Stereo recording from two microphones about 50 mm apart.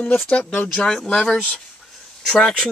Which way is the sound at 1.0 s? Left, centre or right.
Centre.